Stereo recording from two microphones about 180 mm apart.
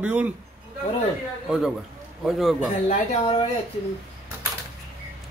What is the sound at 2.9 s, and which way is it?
Speech, 30° left (ahead or behind).